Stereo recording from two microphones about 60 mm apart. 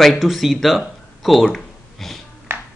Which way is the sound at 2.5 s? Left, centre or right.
Right.